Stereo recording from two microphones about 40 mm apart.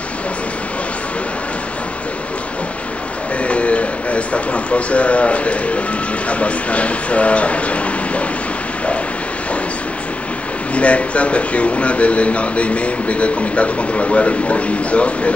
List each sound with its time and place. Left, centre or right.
3.4 s speech: left
10.7 s speech: left